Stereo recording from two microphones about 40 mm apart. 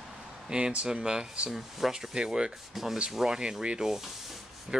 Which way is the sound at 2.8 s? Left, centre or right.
Centre.